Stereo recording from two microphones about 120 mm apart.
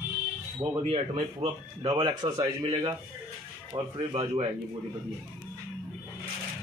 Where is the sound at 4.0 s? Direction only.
45° right (ahead or behind).